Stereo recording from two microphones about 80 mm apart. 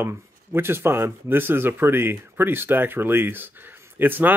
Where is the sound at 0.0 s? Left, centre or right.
Right.